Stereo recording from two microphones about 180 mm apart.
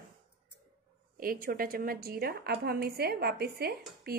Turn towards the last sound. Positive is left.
turn(degrees=-60)  # may be behind; listen again after turning